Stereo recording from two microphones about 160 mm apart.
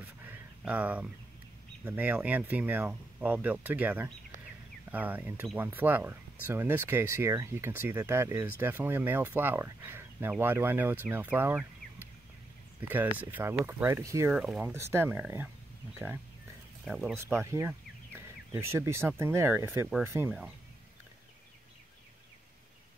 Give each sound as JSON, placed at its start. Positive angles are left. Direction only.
{"t": 0.2, "sound": "a sound", "side_deg": -10}
{"t": 1.9, "sound": "speech", "side_deg": -10}
{"t": 14.3, "sound": "speech", "side_deg": -5}
{"t": 14.7, "sound": "speech", "side_deg": -15}
{"t": 16.8, "sound": "speech", "side_deg": -5}
{"t": 17.1, "sound": "speech", "side_deg": -15}